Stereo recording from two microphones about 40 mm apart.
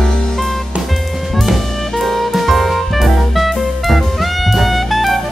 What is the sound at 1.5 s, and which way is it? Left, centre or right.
Music, centre.